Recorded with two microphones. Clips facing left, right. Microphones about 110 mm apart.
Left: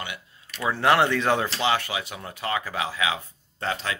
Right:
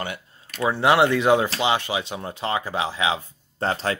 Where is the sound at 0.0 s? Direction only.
45° right (ahead or behind).